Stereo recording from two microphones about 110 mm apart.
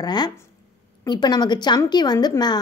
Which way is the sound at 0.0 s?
40° left (ahead or behind).